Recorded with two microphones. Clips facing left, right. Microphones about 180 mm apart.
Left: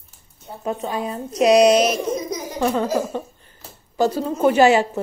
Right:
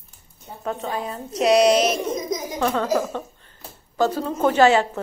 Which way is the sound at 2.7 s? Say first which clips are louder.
Left 1 dB; 10° left (ahead or behind).